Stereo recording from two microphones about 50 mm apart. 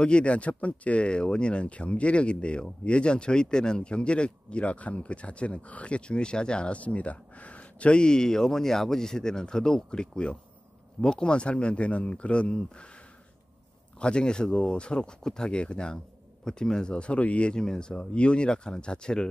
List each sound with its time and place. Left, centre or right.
0.0 s speech: left